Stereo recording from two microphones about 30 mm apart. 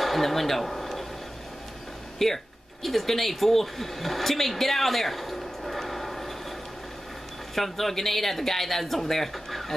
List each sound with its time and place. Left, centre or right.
0.0 s speech: centre
2.1 s speech: centre
7.5 s speech: centre